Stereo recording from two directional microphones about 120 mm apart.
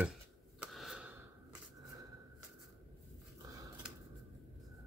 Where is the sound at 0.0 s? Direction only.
5° right (ahead or behind).